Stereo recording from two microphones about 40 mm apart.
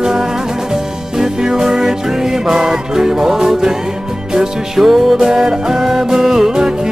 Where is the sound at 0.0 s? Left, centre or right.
Centre.